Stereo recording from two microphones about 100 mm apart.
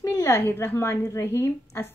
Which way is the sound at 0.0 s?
30° left (ahead or behind).